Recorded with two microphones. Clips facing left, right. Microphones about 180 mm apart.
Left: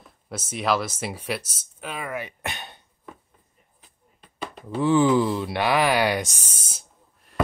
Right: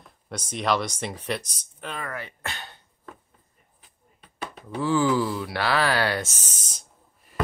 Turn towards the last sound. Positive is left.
turn(degrees=5)  # may be behind; listen again after turning